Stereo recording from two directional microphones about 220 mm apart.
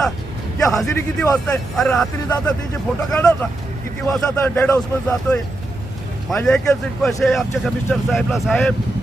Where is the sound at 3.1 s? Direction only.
10° left (ahead or behind).